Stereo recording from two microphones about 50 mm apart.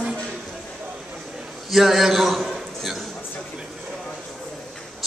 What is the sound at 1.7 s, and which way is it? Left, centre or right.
A man's voice, centre.